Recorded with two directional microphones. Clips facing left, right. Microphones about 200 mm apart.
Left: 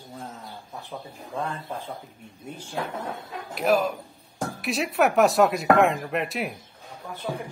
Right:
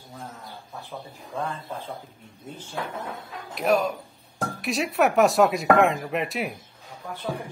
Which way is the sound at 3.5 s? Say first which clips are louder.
Even; centre (ahead or behind).